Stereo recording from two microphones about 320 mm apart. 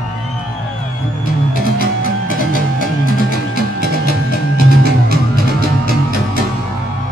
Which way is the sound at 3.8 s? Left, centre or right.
Left.